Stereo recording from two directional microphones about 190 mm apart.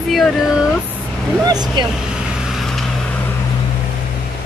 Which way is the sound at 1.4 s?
20° right (ahead or behind).